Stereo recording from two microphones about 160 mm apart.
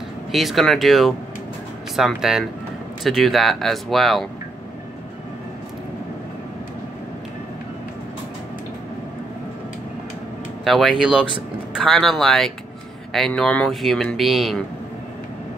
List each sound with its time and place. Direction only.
0.3 s speech: centre (ahead or behind)
10.6 s speech: centre (ahead or behind)